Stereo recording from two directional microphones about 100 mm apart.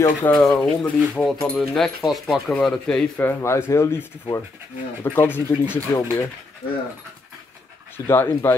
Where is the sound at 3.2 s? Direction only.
25° left (ahead or behind).